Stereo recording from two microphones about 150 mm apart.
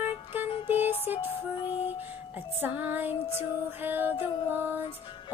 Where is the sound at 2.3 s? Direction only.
10° right (ahead or behind).